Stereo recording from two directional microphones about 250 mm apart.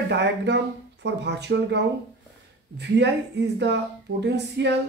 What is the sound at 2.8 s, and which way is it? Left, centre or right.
Speech, right.